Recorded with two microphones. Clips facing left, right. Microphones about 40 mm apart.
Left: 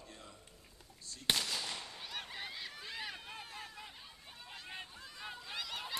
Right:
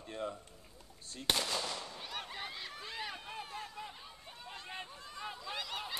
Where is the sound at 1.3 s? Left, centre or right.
Centre.